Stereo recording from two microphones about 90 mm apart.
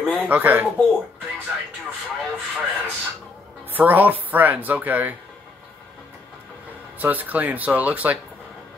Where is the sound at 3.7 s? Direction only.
20° right (ahead or behind).